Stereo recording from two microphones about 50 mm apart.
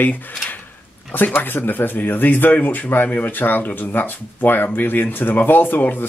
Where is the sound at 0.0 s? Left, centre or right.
Left.